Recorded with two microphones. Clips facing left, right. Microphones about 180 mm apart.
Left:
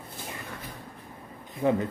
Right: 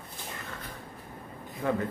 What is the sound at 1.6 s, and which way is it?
Speech, 15° left (ahead or behind).